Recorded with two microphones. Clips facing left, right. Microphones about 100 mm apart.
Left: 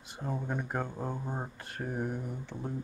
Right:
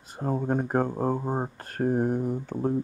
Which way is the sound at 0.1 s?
45° right (ahead or behind).